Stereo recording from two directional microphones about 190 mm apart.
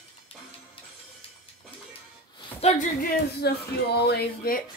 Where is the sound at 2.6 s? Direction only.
40° left (ahead or behind).